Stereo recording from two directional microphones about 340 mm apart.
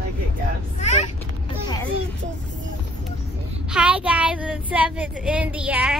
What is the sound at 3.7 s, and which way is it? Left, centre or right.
A woman's voice, centre.